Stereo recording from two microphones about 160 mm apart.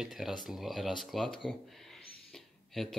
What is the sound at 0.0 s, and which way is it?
Speech, centre (ahead or behind).